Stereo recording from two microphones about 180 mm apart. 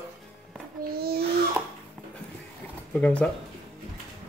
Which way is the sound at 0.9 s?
60° right (ahead or behind).